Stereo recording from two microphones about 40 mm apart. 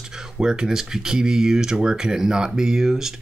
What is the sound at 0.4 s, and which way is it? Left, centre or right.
Speech, centre.